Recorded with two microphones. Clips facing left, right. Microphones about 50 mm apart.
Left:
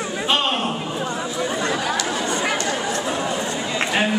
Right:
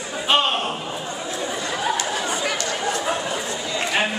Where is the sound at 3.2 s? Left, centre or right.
Left.